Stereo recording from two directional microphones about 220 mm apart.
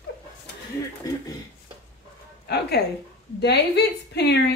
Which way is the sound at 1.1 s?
15° left (ahead or behind).